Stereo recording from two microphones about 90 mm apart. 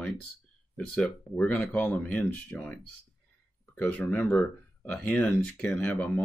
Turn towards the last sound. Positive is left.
turn(degrees=15)  # may be behind; listen again after turning